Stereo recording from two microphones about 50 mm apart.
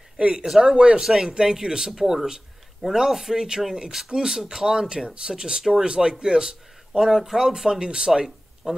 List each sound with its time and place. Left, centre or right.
0.2 s a man's voice: right